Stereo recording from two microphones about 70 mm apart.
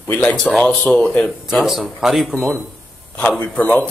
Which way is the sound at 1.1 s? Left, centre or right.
Centre.